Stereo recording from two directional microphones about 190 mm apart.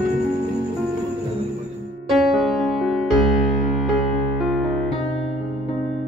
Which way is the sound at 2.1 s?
Centre (ahead or behind).